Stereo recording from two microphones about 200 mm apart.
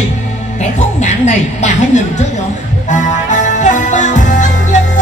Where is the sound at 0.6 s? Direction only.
35° left (ahead or behind).